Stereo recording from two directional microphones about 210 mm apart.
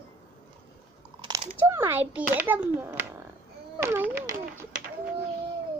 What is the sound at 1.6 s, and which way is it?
A child's voice, 10° right (ahead or behind).